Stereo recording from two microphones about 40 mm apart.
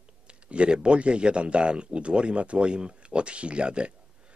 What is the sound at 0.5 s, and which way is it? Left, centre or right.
Speech, right.